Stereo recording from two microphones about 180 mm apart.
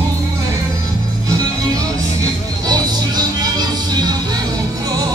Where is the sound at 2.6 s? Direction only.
20° right (ahead or behind).